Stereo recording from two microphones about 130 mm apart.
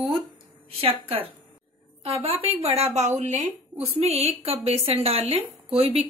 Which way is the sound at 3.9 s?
50° right (ahead or behind).